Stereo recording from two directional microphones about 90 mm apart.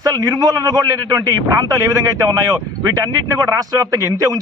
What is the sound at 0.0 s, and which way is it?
A man's voice, 45° right (ahead or behind).